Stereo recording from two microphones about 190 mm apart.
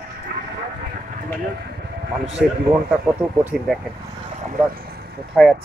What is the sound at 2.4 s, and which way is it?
Speech, 55° right (ahead or behind).